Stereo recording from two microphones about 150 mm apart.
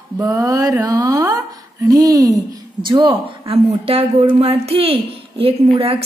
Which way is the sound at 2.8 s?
30° right (ahead or behind).